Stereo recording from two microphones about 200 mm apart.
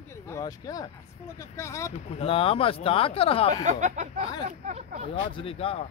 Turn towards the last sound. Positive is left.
turn(degrees=30)  # may be behind; listen again after turning